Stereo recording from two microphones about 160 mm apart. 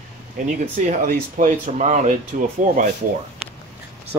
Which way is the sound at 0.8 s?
55° right (ahead or behind).